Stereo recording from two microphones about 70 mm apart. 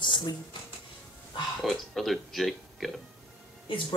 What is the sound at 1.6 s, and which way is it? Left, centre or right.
Speech, centre.